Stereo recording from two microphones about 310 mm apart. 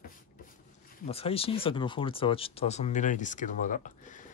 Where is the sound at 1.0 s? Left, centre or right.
Centre.